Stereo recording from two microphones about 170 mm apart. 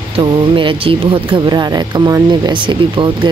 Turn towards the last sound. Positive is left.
turn(degrees=-30)  # may be behind; listen again after turning